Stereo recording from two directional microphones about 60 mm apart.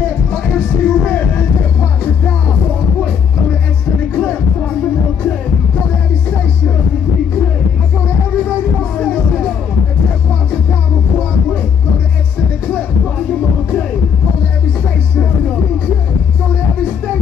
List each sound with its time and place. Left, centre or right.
0.8 s music: left